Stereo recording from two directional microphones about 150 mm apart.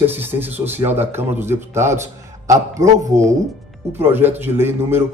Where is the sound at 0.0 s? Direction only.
15° right (ahead or behind).